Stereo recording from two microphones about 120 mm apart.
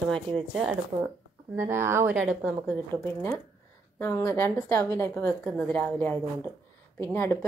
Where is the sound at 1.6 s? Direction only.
20° right (ahead or behind).